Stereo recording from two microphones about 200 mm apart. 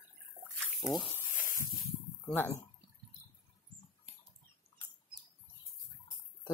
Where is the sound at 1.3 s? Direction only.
45° left (ahead or behind).